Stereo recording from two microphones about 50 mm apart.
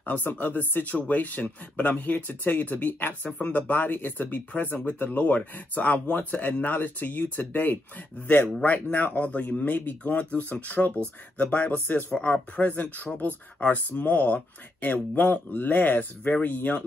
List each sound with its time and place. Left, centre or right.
0.0 s speech: left
12.1 s speech: left